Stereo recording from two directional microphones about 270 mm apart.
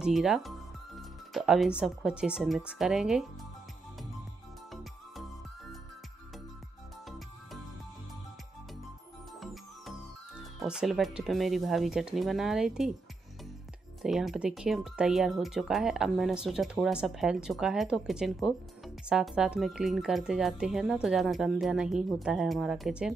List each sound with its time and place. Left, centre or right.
0.0 s speech: centre
9.4 s speech: centre
14.0 s speech: centre